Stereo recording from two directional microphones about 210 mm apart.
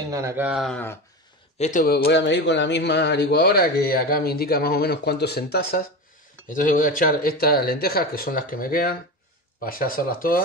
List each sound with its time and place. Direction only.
0.1 s speech: 15° right (ahead or behind); by 0.9 s 5° left (ahead or behind)
1.6 s a man's voice: 40° left (ahead or behind)